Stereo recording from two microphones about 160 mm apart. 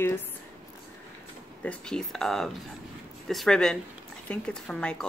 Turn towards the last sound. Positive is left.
turn(degrees=5)  # may be behind; listen again after turning